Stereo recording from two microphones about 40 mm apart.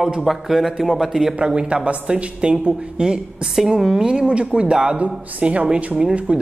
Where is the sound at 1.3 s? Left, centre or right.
Right.